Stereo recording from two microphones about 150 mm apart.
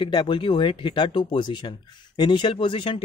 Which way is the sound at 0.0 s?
30° left (ahead or behind).